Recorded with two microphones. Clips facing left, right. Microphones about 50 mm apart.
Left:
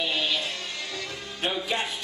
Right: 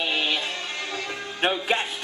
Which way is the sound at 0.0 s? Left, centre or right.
Right.